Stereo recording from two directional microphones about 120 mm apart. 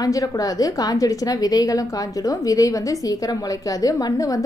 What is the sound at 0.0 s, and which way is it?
A woman's voice, 30° left (ahead or behind).